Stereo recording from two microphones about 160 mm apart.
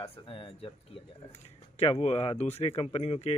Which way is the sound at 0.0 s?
35° left (ahead or behind).